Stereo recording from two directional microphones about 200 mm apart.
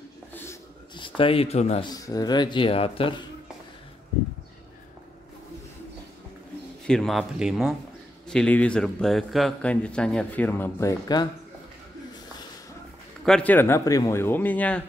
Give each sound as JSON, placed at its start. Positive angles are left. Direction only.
{"t": 0.3, "sound": "a sound", "side_deg": 10}
{"t": 0.9, "sound": "speech", "side_deg": 25}
{"t": 1.9, "sound": "speech", "side_deg": 20}
{"t": 6.9, "sound": "a man's voice", "side_deg": 0}
{"t": 13.2, "sound": "speech", "side_deg": 5}